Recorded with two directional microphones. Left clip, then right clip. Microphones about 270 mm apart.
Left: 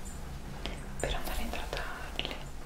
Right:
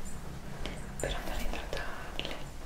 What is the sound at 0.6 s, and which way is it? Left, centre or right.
Whispering, centre.